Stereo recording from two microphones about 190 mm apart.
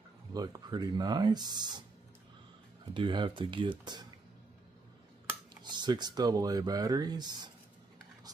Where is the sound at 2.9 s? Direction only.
25° right (ahead or behind).